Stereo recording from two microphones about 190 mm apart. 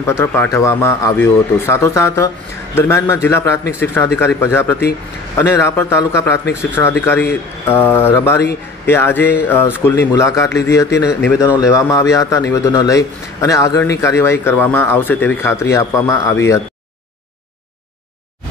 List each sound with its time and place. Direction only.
0.2 s a man's voice: 10° left (ahead or behind)